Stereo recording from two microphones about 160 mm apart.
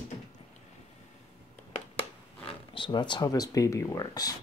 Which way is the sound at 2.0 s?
35° left (ahead or behind).